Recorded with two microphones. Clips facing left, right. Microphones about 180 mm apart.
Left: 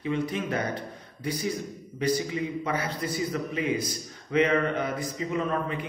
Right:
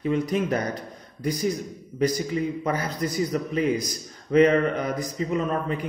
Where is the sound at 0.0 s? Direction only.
40° right (ahead or behind).